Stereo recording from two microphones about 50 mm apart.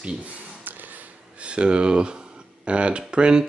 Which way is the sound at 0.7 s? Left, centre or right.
Right.